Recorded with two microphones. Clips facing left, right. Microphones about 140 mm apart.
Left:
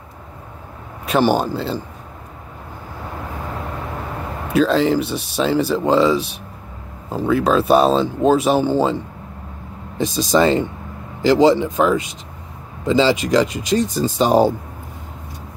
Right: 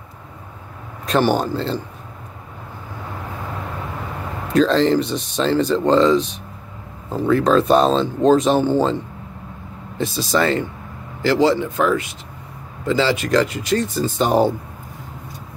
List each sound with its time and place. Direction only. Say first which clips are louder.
1.0 s speech: left 1 dB; 10° left (ahead or behind)
4.5 s speech: even; 5° left (ahead or behind)
9.9 s speech: left 3 dB; 20° left (ahead or behind)